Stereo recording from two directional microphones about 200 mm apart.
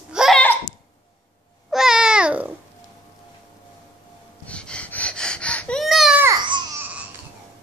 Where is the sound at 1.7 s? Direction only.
5° right (ahead or behind).